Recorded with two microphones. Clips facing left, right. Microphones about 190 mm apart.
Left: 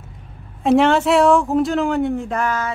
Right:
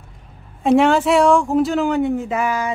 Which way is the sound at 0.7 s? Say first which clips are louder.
Even; centre (ahead or behind).